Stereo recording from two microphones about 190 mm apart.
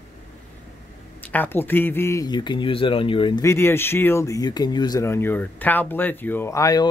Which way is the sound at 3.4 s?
15° left (ahead or behind).